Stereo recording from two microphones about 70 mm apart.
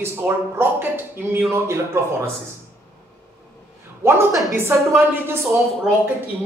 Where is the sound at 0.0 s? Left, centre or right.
Right.